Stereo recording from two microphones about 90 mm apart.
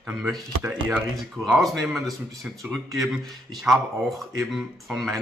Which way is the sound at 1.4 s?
Centre (ahead or behind).